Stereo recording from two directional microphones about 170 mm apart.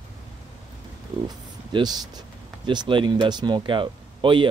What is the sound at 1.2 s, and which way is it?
Speech, 25° right (ahead or behind).